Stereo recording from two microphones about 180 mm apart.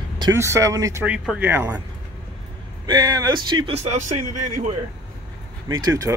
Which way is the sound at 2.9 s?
20° right (ahead or behind).